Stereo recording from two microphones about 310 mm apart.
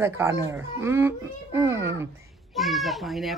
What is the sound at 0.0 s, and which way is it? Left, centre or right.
A child's voice, centre.